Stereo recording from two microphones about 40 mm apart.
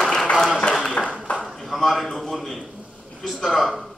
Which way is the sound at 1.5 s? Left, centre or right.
Centre.